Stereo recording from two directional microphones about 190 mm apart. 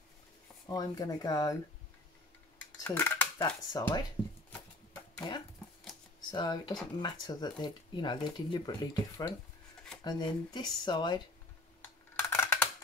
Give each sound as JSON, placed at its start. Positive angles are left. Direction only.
{"t": 0.7, "sound": "speech", "side_deg": 20}
{"t": 2.8, "sound": "dishes", "side_deg": 10}
{"t": 3.3, "sound": "speech", "side_deg": 20}
{"t": 5.2, "sound": "speech", "side_deg": 20}
{"t": 11.8, "sound": "computer keyboard", "side_deg": 10}